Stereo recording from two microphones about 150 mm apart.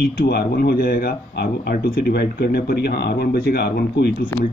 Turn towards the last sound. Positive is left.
turn(degrees=90)